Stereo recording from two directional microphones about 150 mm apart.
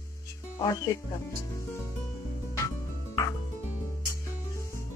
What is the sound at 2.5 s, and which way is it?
Music, 20° left (ahead or behind).